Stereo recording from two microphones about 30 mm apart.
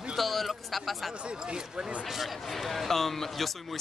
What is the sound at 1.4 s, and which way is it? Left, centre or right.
Speech, right.